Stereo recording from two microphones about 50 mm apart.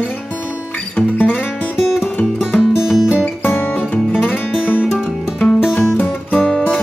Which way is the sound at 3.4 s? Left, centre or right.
Left.